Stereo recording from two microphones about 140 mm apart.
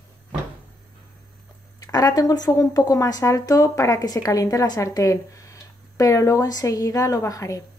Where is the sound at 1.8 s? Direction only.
25° left (ahead or behind).